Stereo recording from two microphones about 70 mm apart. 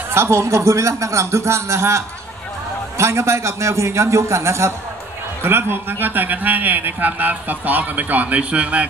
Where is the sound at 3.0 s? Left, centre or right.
Right.